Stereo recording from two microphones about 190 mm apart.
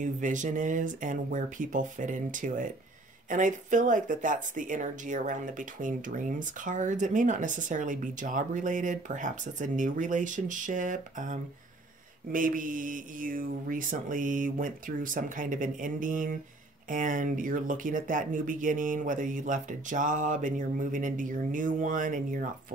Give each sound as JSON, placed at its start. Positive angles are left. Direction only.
{"t": 0.0, "sound": "speech", "side_deg": -40}